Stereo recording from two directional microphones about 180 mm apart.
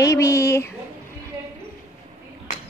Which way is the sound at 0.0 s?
15° left (ahead or behind).